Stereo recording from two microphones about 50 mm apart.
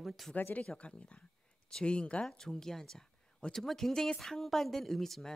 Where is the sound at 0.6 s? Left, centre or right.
Left.